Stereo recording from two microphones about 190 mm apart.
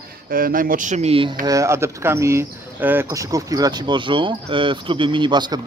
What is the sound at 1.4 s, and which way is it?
Speech, 15° right (ahead or behind).